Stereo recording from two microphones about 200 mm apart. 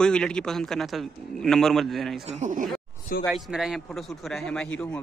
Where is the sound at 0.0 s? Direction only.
5° left (ahead or behind).